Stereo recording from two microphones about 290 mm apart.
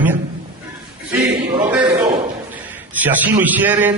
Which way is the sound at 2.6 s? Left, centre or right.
Centre.